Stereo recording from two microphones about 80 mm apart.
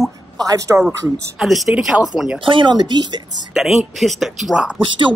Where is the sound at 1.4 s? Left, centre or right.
Centre.